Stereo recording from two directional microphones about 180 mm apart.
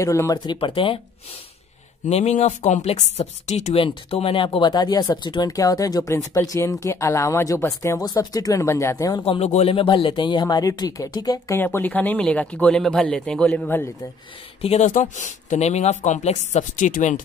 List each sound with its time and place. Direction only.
0.0 s speech: 15° left (ahead or behind)
2.0 s speech: 35° left (ahead or behind); by 9.2 s 20° left (ahead or behind)
9.2 s speech: 35° left (ahead or behind); by 13.8 s 10° left (ahead or behind)
14.6 s speech: 40° left (ahead or behind)